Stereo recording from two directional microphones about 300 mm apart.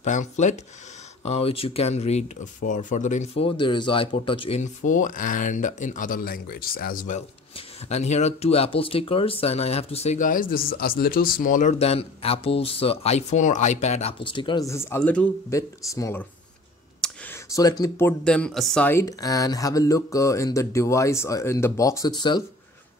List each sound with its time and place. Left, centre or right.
0.0 s speech: left